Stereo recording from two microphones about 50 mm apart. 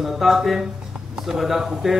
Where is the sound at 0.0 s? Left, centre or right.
Centre.